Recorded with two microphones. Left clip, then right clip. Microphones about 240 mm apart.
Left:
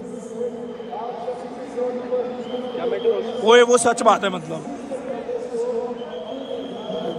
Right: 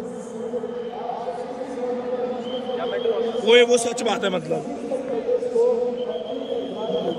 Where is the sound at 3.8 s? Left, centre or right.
Left.